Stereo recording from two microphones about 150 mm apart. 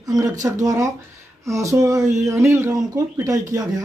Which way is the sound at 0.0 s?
25° right (ahead or behind).